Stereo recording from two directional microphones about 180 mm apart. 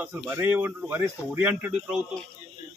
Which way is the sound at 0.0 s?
10° right (ahead or behind).